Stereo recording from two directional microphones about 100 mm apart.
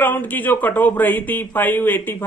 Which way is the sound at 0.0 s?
15° left (ahead or behind).